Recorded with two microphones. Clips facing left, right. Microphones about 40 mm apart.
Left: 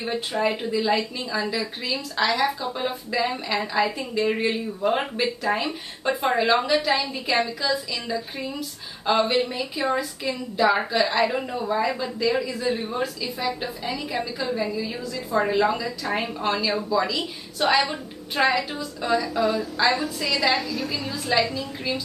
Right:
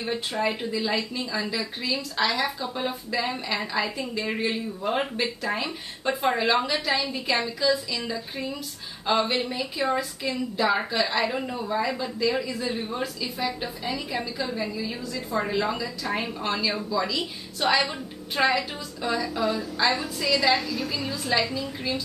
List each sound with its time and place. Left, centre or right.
0.0 s a woman's voice: centre
15.3 s a woman's voice: centre